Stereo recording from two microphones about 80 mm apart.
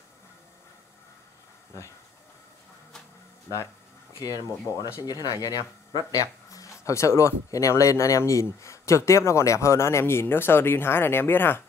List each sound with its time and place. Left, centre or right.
4.1 s speech: left